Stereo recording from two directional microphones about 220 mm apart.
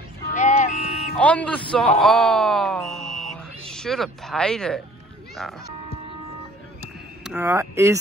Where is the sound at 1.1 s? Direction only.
5° left (ahead or behind).